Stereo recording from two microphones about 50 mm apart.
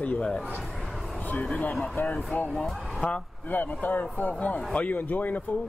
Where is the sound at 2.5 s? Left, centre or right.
Centre.